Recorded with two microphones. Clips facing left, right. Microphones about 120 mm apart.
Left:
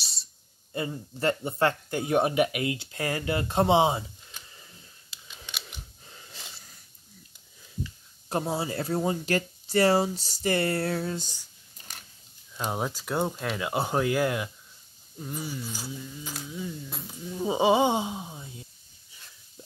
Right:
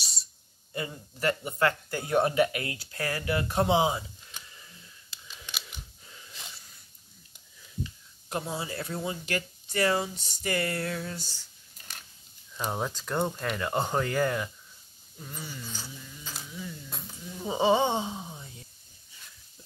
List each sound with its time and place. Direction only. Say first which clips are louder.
0.7 s speech: left 4 dB; 30° left (ahead or behind)
6.0 s gasp: left 1 dB; 35° left (ahead or behind)
8.3 s speech: left 5 dB; 35° left (ahead or behind)
11.1 s speech: left 6 dB; 15° left (ahead or behind)
12.7 s speech: left 1 dB; 10° left (ahead or behind)
16.4 s speech: left 5 dB; 20° left (ahead or behind)
17.4 s a sound: left 2 dB; 10° left (ahead or behind)